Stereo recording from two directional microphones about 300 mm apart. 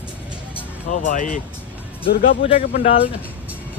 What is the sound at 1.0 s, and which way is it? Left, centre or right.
Speech, left.